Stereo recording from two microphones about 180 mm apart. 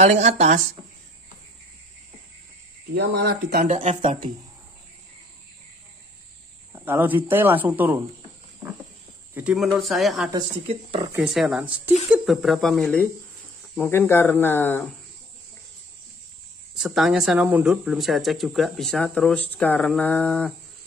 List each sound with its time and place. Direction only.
0.0 s speech: 40° right (ahead or behind)
2.9 s speech: 70° right (ahead or behind)
3.4 s speech: 45° right (ahead or behind)
6.7 s speech: 10° right (ahead or behind)
8.6 s wild animals: 10° right (ahead or behind)
9.3 s speech: 5° right (ahead or behind)
10.7 s speech: 35° right (ahead or behind)
11.1 s speech: 5° right (ahead or behind)
16.7 s speech: centre (ahead or behind)